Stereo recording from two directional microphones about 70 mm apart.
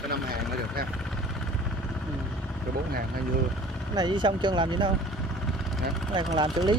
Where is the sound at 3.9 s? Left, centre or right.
Right.